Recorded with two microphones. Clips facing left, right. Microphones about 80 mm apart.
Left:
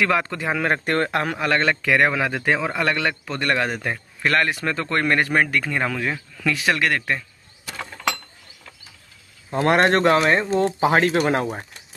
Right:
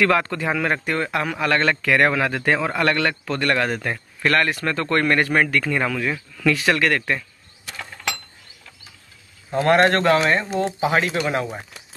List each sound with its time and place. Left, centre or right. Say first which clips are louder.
0.0 s speech: right 2 dB; centre
0.8 s speech: left 2 dB; left
1.1 s speech: left 1 dB; left
1.4 s speech: right 2 dB; left
9.5 s speech: right 1 dB; left
10.6 s speech: left 2 dB; left